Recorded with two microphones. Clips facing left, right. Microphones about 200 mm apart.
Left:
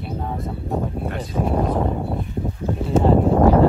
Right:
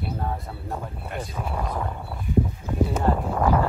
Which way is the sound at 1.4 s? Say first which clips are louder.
Left 11 dB; 30° left (ahead or behind).